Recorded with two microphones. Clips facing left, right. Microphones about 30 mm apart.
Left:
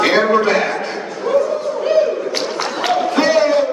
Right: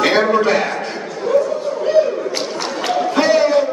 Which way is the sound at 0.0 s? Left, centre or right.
Centre.